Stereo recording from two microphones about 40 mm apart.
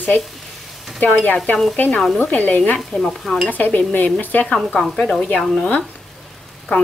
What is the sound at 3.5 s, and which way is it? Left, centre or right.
Dishes, left.